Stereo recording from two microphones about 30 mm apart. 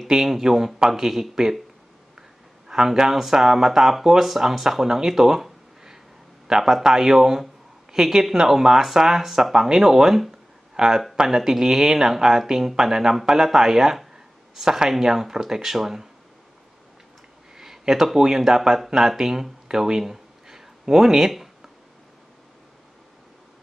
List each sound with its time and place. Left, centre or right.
0.1 s speech: centre
2.7 s speech: centre
17.6 s speech: centre